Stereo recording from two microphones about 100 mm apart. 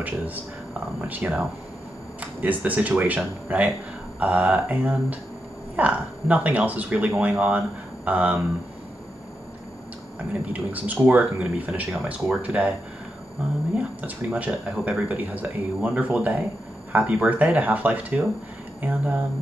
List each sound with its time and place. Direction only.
0.0 s speech: 15° right (ahead or behind)
10.4 s speech: 15° right (ahead or behind)
14.0 s speech: 15° right (ahead or behind)